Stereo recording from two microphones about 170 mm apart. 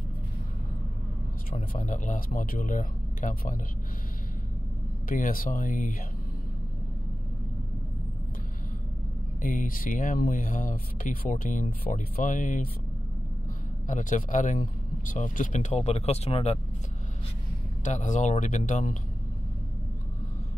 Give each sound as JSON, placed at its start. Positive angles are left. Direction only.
{"t": 1.5, "sound": "speech", "side_deg": 50}
{"t": 5.0, "sound": "speech", "side_deg": 55}
{"t": 9.4, "sound": "speech", "side_deg": 50}
{"t": 13.8, "sound": "speech", "side_deg": 50}
{"t": 17.8, "sound": "speech", "side_deg": 45}